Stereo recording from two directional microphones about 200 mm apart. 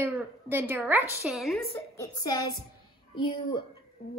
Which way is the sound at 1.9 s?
15° left (ahead or behind).